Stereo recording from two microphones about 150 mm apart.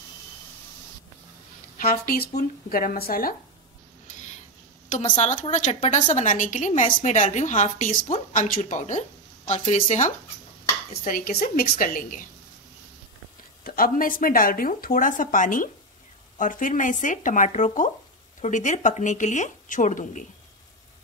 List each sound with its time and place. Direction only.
1.8 s speech: 80° left
4.8 s a woman's voice: 50° left (ahead or behind)
10.9 s a woman's voice: 70° left (ahead or behind)
13.7 s speech: 70° left (ahead or behind); by 20.2 s 55° left (ahead or behind)